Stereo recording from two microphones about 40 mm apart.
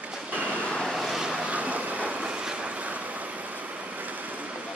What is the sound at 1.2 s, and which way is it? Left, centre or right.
Vehicle, right.